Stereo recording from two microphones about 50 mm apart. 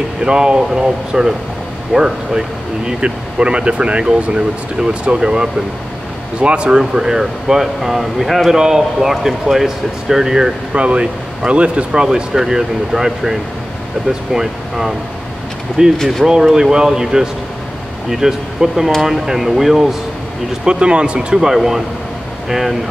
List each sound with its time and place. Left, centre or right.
0.2 s speech: centre
10.7 s speech: right
16.0 s speech: centre
16.3 s speech: centre
20.6 s speech: centre